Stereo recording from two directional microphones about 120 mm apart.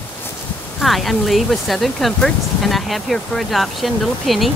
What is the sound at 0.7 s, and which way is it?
Speech, centre (ahead or behind).